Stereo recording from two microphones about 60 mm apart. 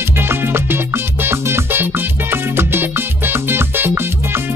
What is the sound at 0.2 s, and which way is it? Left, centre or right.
Music, right.